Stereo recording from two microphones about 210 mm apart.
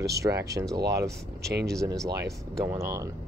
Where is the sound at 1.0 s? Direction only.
50° right (ahead or behind).